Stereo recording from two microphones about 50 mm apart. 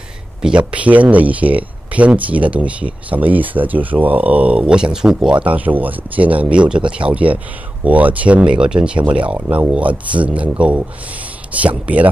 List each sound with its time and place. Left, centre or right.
0.4 s speech: centre
5.3 s speech: right
8.4 s speech: centre